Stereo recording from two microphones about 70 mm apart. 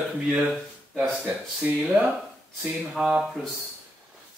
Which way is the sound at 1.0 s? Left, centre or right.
Right.